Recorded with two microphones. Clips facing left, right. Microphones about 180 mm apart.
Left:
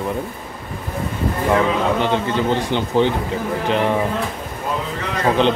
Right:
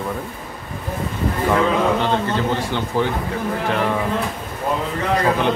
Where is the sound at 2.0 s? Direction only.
20° left (ahead or behind).